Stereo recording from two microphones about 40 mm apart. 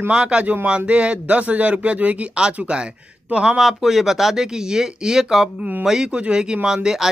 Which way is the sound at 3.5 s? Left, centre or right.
Centre.